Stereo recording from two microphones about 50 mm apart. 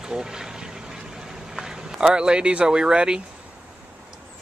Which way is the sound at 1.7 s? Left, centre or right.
Centre.